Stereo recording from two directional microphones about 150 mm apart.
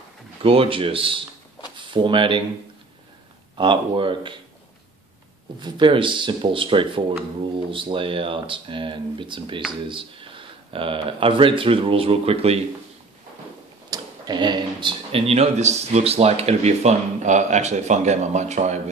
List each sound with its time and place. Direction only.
0.4 s speech: 35° right (ahead or behind)
3.5 s speech: 30° right (ahead or behind)
5.6 s speech: 30° right (ahead or behind)
13.8 s speech: 25° right (ahead or behind); by 18.8 s 50° right (ahead or behind)